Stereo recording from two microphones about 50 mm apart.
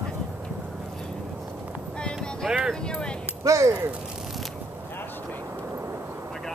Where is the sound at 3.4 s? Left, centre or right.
Right.